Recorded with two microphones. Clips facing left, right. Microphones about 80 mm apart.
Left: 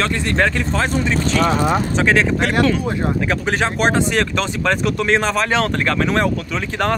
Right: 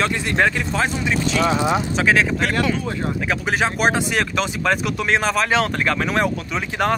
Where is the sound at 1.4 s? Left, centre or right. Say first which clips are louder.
Left 1 dB; left.